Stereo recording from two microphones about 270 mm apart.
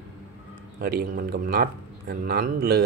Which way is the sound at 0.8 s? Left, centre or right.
Right.